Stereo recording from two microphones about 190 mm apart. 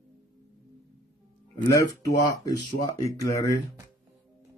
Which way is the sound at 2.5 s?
20° left (ahead or behind).